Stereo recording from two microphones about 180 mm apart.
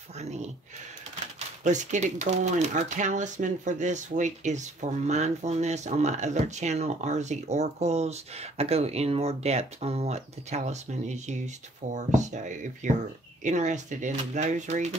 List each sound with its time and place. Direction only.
0.2 s speech: 40° right (ahead or behind)
1.6 s speech: 40° right (ahead or behind)